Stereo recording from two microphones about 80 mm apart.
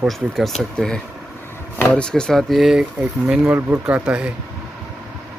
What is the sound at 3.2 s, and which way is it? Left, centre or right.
Speech, centre.